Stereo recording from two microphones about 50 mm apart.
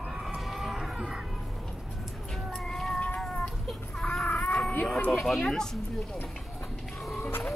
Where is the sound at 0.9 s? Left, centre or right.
Centre.